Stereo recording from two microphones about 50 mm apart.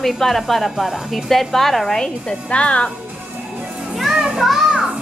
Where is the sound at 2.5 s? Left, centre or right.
Left.